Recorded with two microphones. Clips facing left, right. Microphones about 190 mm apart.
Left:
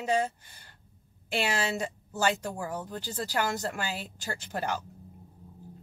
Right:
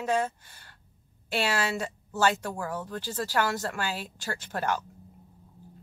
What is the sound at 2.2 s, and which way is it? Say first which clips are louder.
Speech: right 2 dB; 15° left (ahead or behind).